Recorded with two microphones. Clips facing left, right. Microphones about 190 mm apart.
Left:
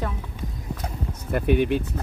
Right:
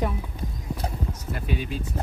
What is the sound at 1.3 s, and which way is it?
Speech, 55° left (ahead or behind).